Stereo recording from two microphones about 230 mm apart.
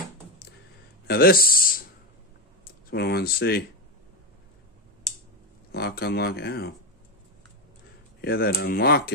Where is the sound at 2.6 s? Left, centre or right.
Left.